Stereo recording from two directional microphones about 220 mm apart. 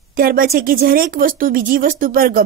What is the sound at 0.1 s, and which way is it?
Speech, 40° right (ahead or behind).